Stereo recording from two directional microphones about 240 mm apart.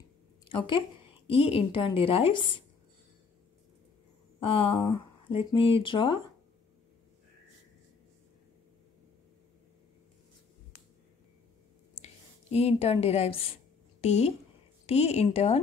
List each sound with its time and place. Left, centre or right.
0.5 s a woman's voice: left
4.4 s a sound: left
4.8 s a woman's voice: centre
12.0 s a woman's voice: left